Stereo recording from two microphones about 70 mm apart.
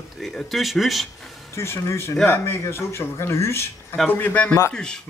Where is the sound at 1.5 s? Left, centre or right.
Left.